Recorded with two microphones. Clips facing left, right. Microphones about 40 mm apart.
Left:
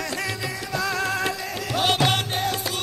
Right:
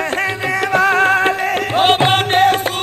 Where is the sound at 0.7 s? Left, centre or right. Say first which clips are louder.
Right 13 dB; right.